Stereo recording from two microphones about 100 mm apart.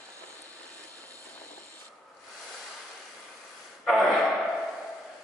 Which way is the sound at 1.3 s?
15° left (ahead or behind).